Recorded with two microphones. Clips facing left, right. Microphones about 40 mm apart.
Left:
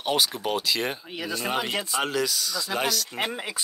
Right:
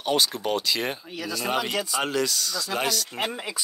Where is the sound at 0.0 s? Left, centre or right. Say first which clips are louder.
Right 1 dB; centre.